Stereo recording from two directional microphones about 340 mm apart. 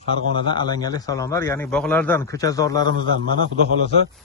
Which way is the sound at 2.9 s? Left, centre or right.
Right.